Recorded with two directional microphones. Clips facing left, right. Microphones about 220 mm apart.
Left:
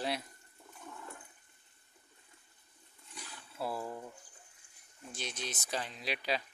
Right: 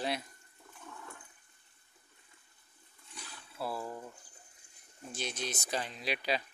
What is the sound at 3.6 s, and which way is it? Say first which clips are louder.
Speech: even; 15° left (ahead or behind).